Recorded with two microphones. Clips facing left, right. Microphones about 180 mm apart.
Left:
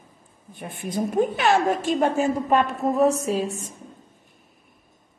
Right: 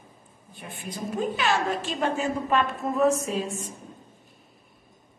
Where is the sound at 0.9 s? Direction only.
55° left (ahead or behind).